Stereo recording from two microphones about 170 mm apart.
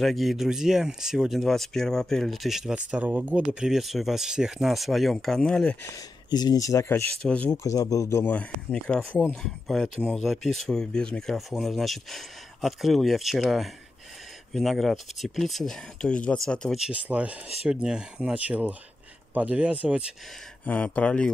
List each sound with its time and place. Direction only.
0.0 s speech: centre (ahead or behind)
5.9 s speech: 25° left (ahead or behind); by 20.1 s 5° right (ahead or behind)
20.6 s speech: 10° left (ahead or behind)